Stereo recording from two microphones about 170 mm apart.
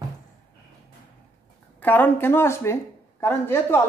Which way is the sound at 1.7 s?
10° left (ahead or behind).